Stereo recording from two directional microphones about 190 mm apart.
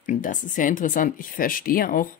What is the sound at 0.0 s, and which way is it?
Speech, 45° left (ahead or behind).